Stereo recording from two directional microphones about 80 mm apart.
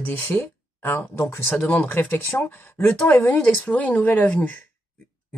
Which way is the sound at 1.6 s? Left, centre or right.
Left.